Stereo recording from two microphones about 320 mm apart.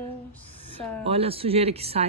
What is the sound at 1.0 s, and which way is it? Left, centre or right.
Speech, centre.